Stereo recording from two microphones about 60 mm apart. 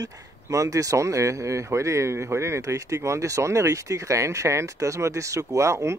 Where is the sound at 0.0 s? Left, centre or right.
Right.